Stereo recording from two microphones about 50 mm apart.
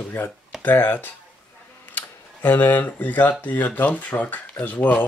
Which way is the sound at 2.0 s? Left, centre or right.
Left.